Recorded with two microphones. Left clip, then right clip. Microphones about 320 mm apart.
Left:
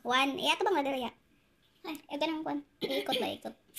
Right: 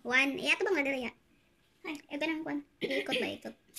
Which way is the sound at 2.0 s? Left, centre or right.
Centre.